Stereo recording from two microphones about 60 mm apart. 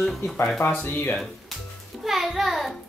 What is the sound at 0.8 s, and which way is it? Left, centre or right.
Speech, left.